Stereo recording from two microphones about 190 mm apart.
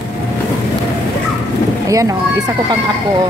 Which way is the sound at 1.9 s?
15° right (ahead or behind).